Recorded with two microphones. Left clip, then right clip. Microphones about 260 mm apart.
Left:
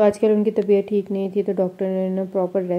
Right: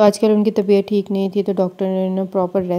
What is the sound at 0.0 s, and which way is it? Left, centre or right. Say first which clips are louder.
A woman's voice: right 3 dB; right.